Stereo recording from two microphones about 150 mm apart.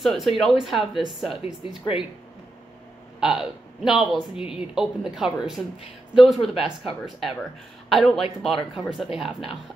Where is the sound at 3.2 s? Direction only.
5° right (ahead or behind).